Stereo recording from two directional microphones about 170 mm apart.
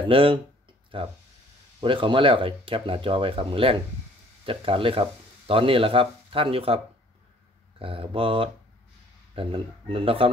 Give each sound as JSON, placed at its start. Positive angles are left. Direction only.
{"t": 0.0, "sound": "speech", "side_deg": -30}
{"t": 7.8, "sound": "speech", "side_deg": -30}